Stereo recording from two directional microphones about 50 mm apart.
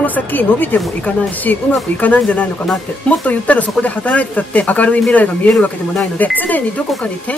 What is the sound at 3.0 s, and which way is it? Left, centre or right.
Speech, left.